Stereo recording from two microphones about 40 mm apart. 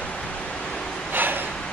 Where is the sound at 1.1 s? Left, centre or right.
Right.